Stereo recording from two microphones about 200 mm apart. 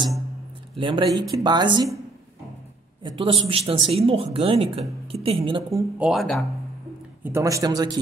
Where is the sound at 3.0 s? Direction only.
25° right (ahead or behind).